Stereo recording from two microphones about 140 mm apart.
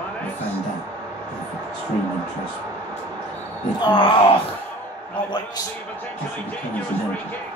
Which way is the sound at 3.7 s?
35° left (ahead or behind).